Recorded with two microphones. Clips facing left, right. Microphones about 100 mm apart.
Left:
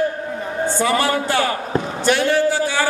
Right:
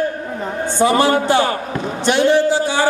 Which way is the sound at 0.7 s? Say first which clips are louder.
Right 6 dB; 25° right (ahead or behind).